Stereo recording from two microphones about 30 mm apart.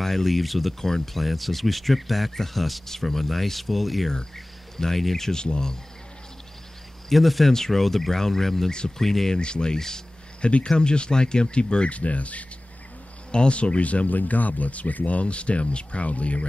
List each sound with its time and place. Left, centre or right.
0.0 s speech: centre
0.7 s speech: centre
5.3 s speech: left
7.1 s speech: centre
7.5 s speech: centre
8.6 s speech: left
9.4 s speech: left
9.8 s speech: centre
10.4 s speech: left
12.0 s speech: left
13.3 s speech: left
14.1 s speech: left